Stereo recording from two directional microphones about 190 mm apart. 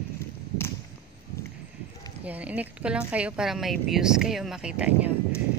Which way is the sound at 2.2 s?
10° right (ahead or behind).